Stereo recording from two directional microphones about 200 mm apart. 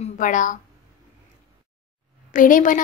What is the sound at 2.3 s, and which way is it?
Speech, 40° left (ahead or behind).